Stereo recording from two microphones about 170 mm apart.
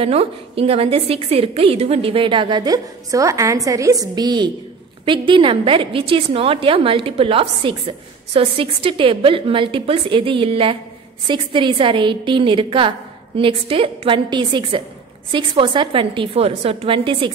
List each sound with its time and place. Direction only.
0.0 s a woman's voice: 35° right (ahead or behind)